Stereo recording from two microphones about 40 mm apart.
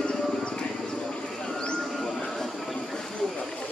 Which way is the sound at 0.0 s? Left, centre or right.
Left.